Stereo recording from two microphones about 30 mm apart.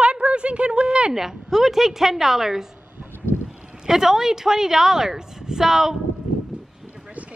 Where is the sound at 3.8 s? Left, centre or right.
Centre.